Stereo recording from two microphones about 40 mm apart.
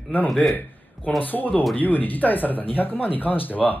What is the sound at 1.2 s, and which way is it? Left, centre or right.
Speech, left.